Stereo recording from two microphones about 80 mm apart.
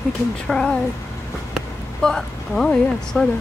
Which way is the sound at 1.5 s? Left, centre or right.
Centre.